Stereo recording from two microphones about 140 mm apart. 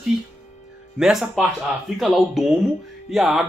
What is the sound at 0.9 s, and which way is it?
Speech, 5° right (ahead or behind).